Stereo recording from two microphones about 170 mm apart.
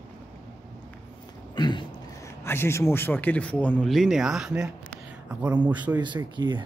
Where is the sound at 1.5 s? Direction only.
25° left (ahead or behind).